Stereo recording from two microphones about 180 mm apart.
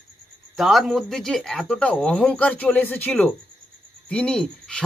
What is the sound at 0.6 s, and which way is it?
Speech, centre (ahead or behind).